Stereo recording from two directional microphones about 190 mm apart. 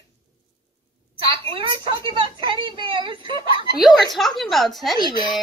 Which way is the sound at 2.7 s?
25° right (ahead or behind).